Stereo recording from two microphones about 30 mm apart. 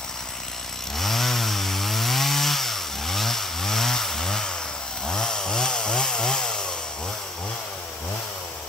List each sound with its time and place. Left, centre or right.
0.9 s chainsaw: centre; by 6.7 s left